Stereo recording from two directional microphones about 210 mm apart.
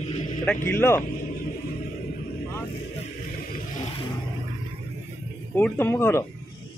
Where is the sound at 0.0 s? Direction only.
35° left (ahead or behind).